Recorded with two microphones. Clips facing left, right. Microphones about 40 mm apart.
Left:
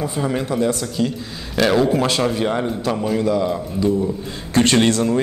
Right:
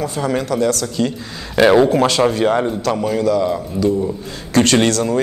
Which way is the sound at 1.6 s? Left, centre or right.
Centre.